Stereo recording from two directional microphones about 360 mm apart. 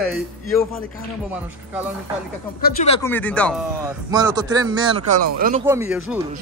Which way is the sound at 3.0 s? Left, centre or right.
Centre.